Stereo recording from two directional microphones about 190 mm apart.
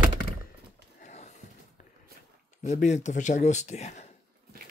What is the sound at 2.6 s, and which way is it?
Speech, 35° left (ahead or behind).